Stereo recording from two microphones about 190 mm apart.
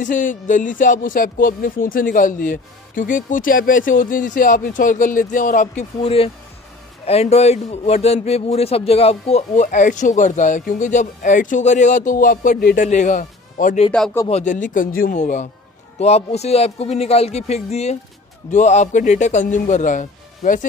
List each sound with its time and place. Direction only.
0.0 s speech: 45° left (ahead or behind)
6.0 s a man's voice: 30° left (ahead or behind)